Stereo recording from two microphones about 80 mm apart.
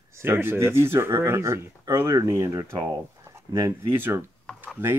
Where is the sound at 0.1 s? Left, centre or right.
Right.